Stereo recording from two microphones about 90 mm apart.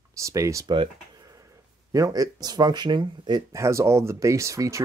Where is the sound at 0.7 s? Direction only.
50° right (ahead or behind).